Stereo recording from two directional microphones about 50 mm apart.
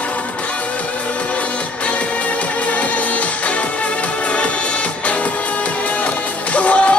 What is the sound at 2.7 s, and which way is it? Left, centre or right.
Music, left.